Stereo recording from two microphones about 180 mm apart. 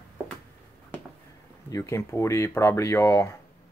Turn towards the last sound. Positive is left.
turn(degrees=15)  # may be behind; listen again after turning